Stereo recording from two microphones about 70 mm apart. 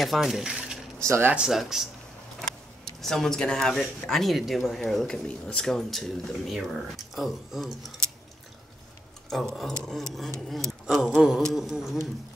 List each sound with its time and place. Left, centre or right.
0.0 s coin: centre
1.0 s speech: right
1.3 s speech: centre
2.4 s a sound: centre
4.1 s speech: centre
4.9 s speech: centre
9.3 s speech: centre